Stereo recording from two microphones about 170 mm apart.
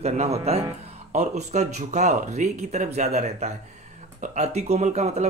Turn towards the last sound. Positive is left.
turn(degrees=-40)  # may be behind; listen again after turning